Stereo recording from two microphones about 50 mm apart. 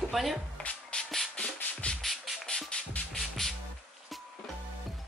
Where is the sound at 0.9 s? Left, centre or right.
Left.